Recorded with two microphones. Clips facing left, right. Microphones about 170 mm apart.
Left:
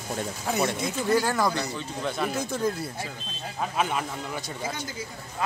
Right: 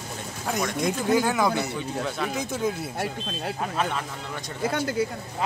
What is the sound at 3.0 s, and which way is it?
Speech, 70° right (ahead or behind).